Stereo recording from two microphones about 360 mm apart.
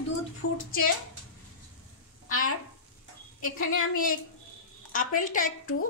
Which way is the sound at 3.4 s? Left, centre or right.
Left.